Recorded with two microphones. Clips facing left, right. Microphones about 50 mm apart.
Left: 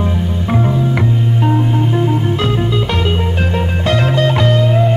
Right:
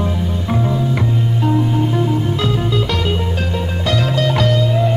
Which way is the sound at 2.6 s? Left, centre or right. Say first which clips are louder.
Left 2 dB; centre.